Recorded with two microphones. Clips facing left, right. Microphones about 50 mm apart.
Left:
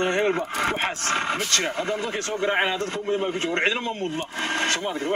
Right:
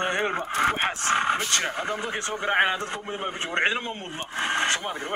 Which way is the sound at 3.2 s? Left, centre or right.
Right.